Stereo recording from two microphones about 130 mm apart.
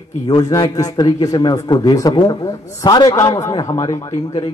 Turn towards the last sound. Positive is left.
turn(degrees=30)  # may be behind; listen again after turning